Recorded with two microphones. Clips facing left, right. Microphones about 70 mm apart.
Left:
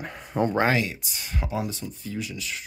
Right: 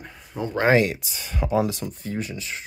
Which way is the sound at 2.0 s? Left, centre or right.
Right.